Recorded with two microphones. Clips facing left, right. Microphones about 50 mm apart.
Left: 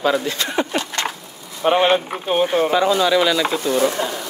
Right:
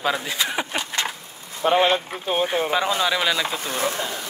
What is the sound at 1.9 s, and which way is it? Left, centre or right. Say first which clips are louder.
Speech: left 4 dB; centre.